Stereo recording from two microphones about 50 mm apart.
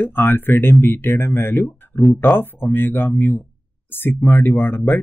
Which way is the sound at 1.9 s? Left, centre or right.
Centre.